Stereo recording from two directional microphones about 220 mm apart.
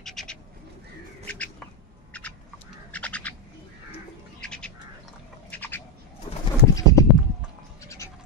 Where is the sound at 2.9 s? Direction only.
5° left (ahead or behind).